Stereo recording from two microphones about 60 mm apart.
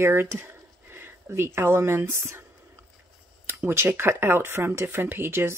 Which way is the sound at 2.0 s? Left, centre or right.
Right.